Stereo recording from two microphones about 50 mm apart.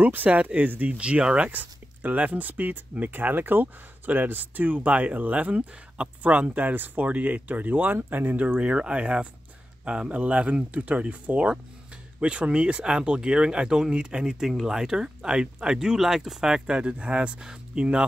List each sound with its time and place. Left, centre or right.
0.0 s speech: right
1.6 s speech: right
8.5 s speech: right
14.4 s speech: centre